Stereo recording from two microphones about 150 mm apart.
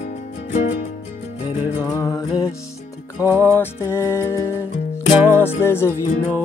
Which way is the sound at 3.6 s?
15° left (ahead or behind).